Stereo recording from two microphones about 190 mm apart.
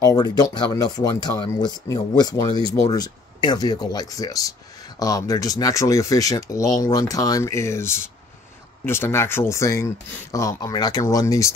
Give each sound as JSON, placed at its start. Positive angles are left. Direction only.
{"t": 0.0, "sound": "speech", "side_deg": 20}